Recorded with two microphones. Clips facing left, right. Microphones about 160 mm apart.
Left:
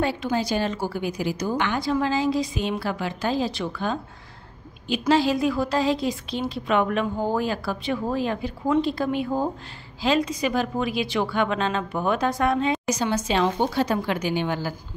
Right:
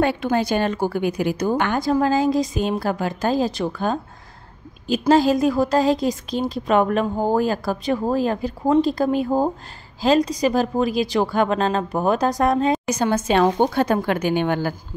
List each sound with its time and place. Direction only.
0.0 s a woman's voice: 60° right (ahead or behind); by 12.8 s 40° right (ahead or behind)
12.8 s a woman's voice: 55° right (ahead or behind)